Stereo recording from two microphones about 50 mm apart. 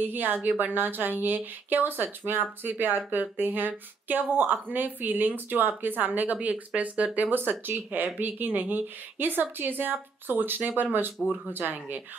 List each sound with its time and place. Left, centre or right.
0.0 s speech: right
7.2 s speech: right